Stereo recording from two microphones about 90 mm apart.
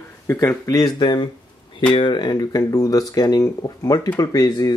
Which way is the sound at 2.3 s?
40° left (ahead or behind).